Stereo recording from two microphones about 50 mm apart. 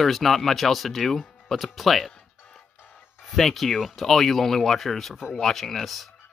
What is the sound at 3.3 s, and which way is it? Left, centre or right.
Speech, centre.